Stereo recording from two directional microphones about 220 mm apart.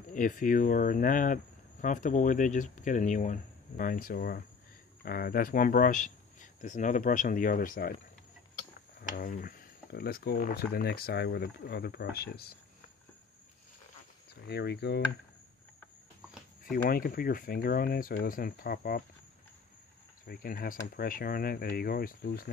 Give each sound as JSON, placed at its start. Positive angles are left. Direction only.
{"t": 0.1, "sound": "speech", "side_deg": 35}
{"t": 9.1, "sound": "speech", "side_deg": 40}
{"t": 14.3, "sound": "speech", "side_deg": 45}
{"t": 16.7, "sound": "speech", "side_deg": 40}
{"t": 20.2, "sound": "speech", "side_deg": 40}